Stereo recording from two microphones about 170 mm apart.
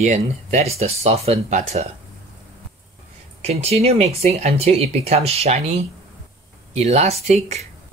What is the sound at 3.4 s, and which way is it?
Speech, 40° right (ahead or behind).